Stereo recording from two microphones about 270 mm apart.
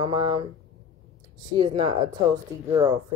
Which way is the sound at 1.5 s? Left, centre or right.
Centre.